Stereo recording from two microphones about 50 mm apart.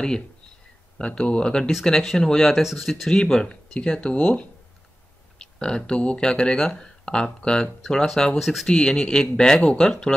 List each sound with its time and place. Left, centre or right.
0.9 s speech: centre
3.2 s speech: centre
8.6 s speech: centre